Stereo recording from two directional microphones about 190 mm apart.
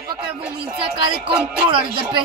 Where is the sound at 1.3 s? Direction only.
10° right (ahead or behind).